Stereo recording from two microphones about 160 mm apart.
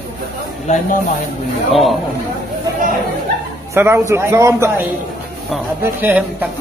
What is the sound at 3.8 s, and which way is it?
A man's voice, 15° right (ahead or behind).